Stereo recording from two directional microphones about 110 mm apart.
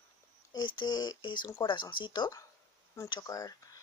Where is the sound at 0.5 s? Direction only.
40° left (ahead or behind).